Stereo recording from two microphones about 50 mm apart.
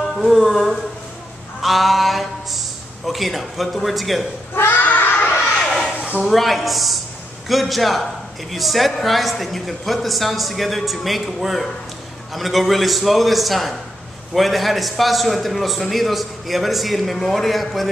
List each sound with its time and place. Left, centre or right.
0.1 s a man's voice: centre
4.7 s a sound: left
6.2 s a man's voice: centre